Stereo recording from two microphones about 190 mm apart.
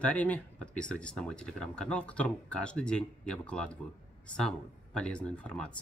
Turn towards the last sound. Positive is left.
turn(degrees=5)  # may be behind; listen again after turning